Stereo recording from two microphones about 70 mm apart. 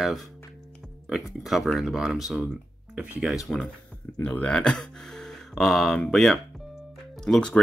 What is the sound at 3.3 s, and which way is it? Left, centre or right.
Speech, centre.